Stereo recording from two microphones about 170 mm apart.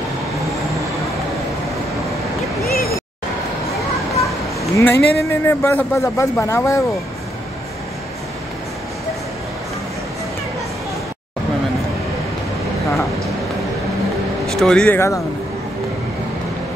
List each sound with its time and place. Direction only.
2.6 s vehicle: 65° left (ahead or behind)
4.7 s a man's voice: 15° left (ahead or behind)
14.4 s speech: centre (ahead or behind)